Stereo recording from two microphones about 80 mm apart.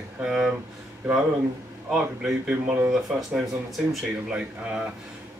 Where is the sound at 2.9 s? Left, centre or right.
Centre.